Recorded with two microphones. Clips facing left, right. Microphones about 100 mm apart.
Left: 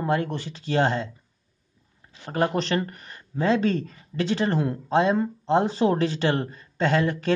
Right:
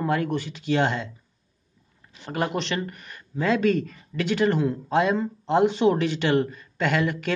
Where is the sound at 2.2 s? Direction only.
35° left (ahead or behind).